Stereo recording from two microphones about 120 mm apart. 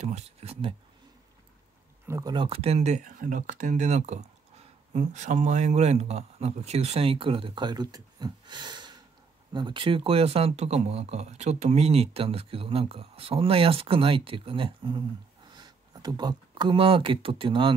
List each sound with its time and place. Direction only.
0.0 s speech: 65° right (ahead or behind)
2.2 s speech: 45° right (ahead or behind)